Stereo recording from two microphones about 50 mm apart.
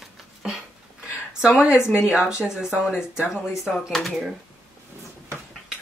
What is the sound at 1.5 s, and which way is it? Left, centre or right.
Speech, centre.